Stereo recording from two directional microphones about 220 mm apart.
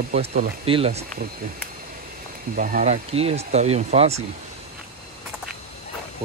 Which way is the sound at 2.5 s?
40° right (ahead or behind).